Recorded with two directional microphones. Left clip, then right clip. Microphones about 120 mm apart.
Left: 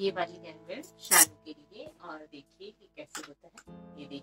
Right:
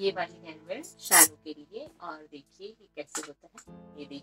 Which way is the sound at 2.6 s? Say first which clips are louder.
Right 6 dB; 25° right (ahead or behind).